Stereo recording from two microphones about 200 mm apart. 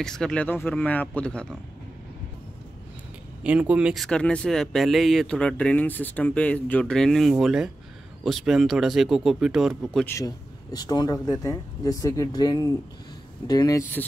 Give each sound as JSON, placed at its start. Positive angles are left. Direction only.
{"t": 0.0, "sound": "speech", "side_deg": 5}
{"t": 3.4, "sound": "speech", "side_deg": -5}
{"t": 10.1, "sound": "speech", "side_deg": 20}